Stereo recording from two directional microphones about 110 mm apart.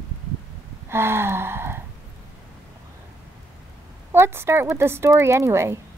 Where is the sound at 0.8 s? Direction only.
20° right (ahead or behind).